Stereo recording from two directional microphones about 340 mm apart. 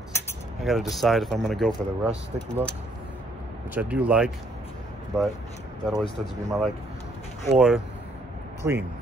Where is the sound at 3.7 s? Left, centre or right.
Centre.